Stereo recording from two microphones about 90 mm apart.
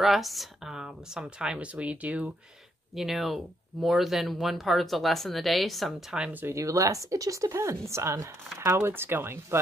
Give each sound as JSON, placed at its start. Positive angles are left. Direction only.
{"t": 0.0, "sound": "speech", "side_deg": 0}
{"t": 3.0, "sound": "speech", "side_deg": -5}
{"t": 6.4, "sound": "speech", "side_deg": -35}